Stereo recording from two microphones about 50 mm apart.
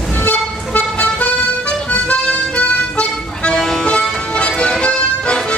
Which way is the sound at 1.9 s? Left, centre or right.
Left.